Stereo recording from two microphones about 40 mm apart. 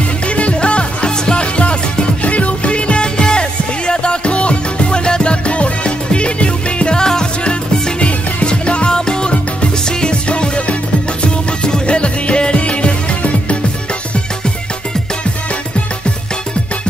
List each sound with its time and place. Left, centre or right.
0.4 s music: left